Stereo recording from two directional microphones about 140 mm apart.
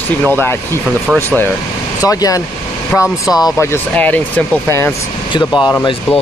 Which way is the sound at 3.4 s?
15° left (ahead or behind).